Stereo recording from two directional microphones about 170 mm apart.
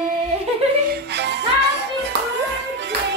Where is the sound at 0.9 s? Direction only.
90° right.